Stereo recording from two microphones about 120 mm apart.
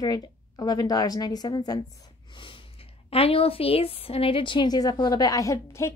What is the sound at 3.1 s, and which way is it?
A woman's voice, 55° left (ahead or behind).